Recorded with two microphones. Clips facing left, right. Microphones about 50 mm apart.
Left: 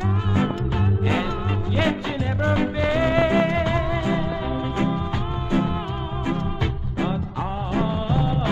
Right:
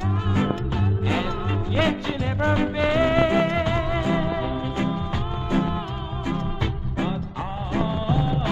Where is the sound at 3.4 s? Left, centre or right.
Left.